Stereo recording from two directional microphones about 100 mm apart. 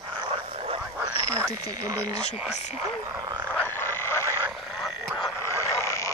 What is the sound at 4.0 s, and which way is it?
Frog, 25° left (ahead or behind).